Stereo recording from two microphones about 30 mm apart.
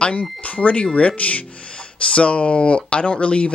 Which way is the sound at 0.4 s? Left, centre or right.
Left.